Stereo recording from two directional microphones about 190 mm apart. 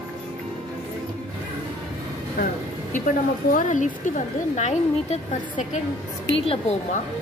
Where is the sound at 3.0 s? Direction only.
45° left (ahead or behind).